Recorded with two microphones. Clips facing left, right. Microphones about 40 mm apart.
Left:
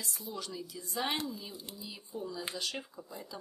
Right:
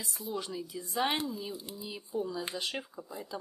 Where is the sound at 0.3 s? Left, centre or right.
Centre.